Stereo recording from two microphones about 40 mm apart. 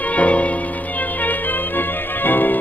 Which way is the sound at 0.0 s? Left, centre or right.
Left.